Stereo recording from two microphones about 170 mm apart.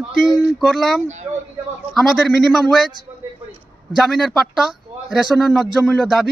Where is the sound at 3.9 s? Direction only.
Centre (ahead or behind).